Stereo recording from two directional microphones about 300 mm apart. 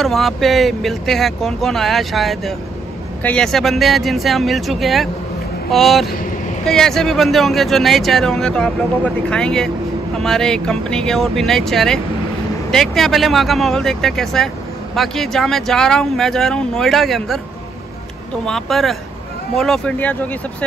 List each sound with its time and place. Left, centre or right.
0.0 s speech: centre
18.4 s speech: centre